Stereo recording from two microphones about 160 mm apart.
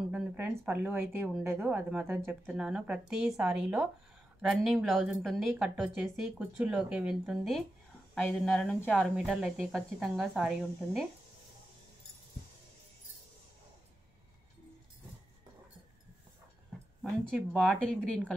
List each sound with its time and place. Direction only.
0.1 s a woman's voice: 10° right (ahead or behind)
17.0 s speech: 10° right (ahead or behind)
17.6 s speech: 5° left (ahead or behind)